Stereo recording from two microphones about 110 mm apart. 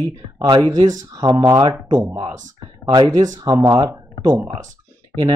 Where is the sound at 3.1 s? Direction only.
30° right (ahead or behind).